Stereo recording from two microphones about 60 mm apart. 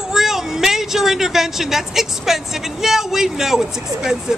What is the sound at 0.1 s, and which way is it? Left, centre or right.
A woman's voice, centre.